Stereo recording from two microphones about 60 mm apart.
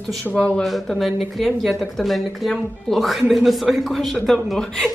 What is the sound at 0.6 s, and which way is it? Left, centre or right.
Speech, centre.